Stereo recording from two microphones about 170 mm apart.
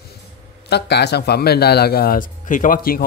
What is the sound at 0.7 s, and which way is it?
A man's voice, 75° left (ahead or behind).